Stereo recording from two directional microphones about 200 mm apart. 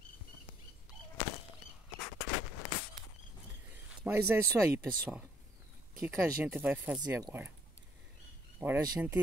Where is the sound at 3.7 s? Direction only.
10° right (ahead or behind).